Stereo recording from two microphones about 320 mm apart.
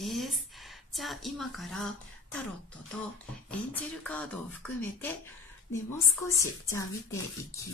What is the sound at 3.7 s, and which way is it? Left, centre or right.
Speech, centre.